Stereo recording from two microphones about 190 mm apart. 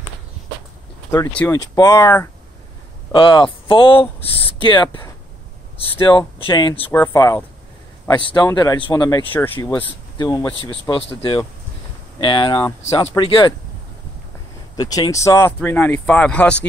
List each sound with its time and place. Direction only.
1.5 s speech: 20° left (ahead or behind)
3.1 s speech: 25° left (ahead or behind)
6.9 s speech: 10° left (ahead or behind)
9.3 s speech: 10° left (ahead or behind)
10.1 s speech: 20° left (ahead or behind)
12.2 s speech: 25° left (ahead or behind)
14.8 s speech: 20° left (ahead or behind)